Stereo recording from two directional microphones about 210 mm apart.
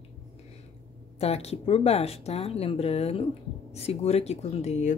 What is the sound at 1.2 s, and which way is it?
Speech, 30° left (ahead or behind).